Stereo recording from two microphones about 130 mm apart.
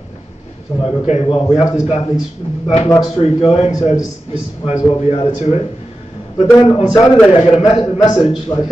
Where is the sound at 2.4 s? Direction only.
40° left (ahead or behind).